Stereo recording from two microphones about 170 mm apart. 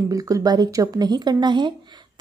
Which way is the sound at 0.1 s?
20° right (ahead or behind).